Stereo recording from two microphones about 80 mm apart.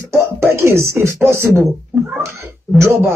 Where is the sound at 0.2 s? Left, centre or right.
Right.